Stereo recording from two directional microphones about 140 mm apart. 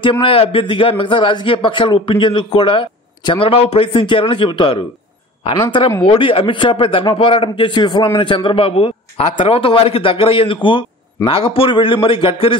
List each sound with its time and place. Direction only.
0.2 s a man's voice: 40° left (ahead or behind)